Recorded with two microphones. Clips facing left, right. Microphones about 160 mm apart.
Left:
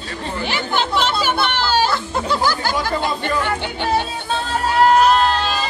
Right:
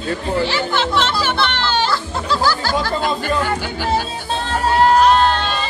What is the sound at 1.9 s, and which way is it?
Speech, 20° left (ahead or behind).